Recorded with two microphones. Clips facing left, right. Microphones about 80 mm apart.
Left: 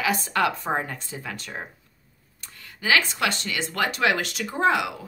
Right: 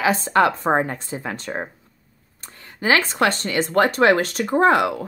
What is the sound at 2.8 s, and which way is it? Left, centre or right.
A woman's voice, right.